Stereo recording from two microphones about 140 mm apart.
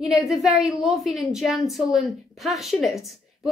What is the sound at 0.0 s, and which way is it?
A woman's voice, centre (ahead or behind).